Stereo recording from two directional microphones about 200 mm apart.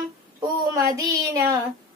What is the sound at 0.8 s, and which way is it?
Child singing, 15° right (ahead or behind).